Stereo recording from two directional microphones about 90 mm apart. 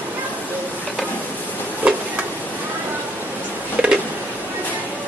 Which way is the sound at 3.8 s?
10° right (ahead or behind).